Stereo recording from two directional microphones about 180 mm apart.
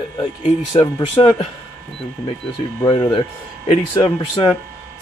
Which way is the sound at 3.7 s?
30° left (ahead or behind).